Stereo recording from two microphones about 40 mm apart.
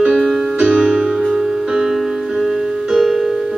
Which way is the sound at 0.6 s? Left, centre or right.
Centre.